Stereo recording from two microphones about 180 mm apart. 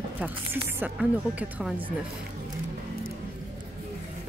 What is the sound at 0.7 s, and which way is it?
A woman's voice, 10° right (ahead or behind).